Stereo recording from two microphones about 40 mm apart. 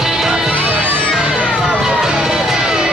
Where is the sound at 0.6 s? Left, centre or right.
Right.